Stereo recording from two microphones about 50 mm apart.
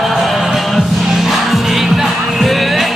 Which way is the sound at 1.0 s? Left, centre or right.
Centre.